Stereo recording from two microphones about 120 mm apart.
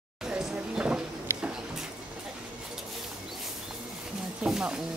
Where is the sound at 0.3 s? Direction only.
10° right (ahead or behind).